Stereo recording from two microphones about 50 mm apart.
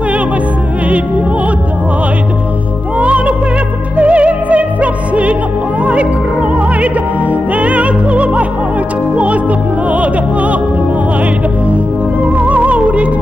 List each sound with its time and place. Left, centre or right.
3.0 s music: right
6.5 s opera: right
9.1 s music: right
12.3 s music: right